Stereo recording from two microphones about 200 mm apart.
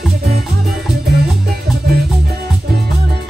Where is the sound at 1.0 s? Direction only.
50° right (ahead or behind).